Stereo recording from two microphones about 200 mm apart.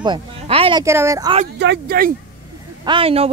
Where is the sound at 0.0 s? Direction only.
25° right (ahead or behind).